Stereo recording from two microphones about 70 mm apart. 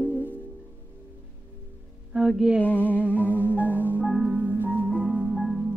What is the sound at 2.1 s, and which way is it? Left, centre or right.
Music, centre.